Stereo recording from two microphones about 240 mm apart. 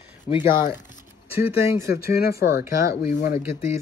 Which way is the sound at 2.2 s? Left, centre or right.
Left.